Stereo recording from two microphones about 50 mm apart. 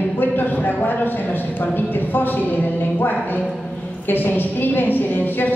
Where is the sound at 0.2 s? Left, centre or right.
Left.